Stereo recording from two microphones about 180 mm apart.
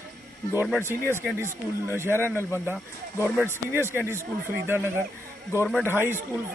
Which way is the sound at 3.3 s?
15° right (ahead or behind).